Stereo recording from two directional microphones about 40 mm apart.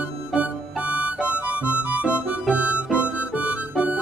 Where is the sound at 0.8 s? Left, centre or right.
Right.